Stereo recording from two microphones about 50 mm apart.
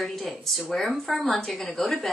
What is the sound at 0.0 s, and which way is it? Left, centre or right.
Speech, centre.